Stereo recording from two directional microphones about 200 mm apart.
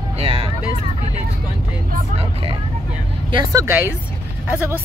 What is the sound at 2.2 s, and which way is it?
Speech, 25° right (ahead or behind).